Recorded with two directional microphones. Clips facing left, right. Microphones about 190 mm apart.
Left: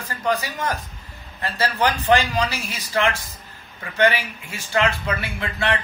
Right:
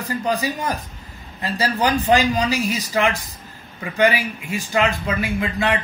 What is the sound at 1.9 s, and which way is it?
A man's voice, 15° right (ahead or behind).